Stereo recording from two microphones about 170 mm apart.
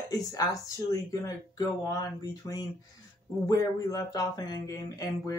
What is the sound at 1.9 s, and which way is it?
Speech, 20° left (ahead or behind).